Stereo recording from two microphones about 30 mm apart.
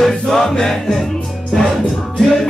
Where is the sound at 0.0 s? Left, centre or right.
Centre.